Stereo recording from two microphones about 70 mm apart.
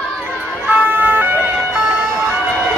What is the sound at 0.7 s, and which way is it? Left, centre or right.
Emergency vehicle, right.